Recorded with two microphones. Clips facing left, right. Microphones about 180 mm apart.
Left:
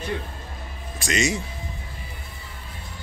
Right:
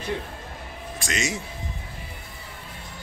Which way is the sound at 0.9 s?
Centre (ahead or behind).